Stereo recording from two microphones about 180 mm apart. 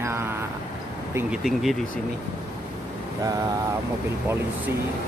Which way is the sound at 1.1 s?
5° right (ahead or behind).